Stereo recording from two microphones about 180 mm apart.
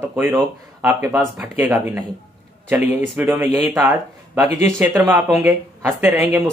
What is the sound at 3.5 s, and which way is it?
Speech, centre (ahead or behind).